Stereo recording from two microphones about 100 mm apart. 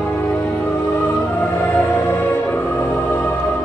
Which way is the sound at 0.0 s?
30° left (ahead or behind).